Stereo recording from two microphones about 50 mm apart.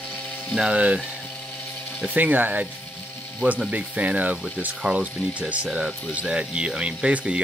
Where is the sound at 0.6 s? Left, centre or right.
Right.